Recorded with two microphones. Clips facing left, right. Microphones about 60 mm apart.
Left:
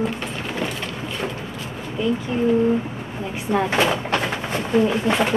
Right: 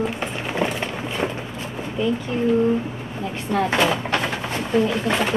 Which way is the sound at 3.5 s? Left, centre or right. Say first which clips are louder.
Even; centre.